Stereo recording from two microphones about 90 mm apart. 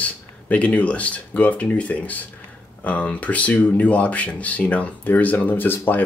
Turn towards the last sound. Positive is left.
turn(degrees=20)  # may be behind; listen again after turning